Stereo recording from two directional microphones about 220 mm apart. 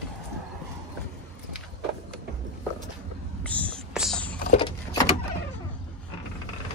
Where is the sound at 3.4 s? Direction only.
5° left (ahead or behind).